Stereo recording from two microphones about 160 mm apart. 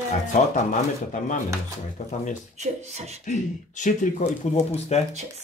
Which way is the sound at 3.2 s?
50° left (ahead or behind).